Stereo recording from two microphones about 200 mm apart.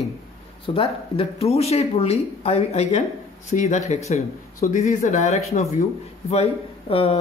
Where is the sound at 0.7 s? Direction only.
30° left (ahead or behind).